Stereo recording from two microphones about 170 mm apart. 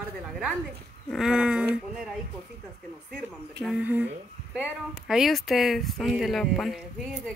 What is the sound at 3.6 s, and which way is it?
Speech, 10° right (ahead or behind).